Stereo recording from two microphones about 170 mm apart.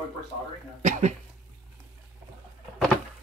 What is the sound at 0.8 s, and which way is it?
Speech, 45° right (ahead or behind).